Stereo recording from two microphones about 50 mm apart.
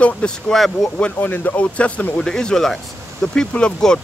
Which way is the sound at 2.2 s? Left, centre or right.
Centre.